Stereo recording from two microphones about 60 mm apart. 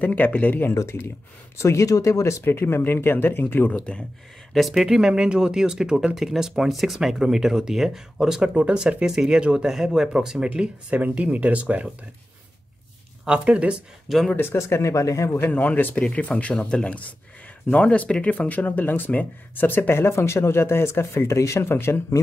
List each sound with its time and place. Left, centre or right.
0.0 s speech: left
1.6 s speech: left
1.9 s speech: left
2.4 s speech: left
4.6 s speech: centre
8.4 s speech: right
10.5 s speech: right
13.4 s speech: centre
14.0 s speech: centre
14.3 s speech: left
15.3 s speech: left
16.0 s speech: centre; by 21.6 s left
21.6 s speech: left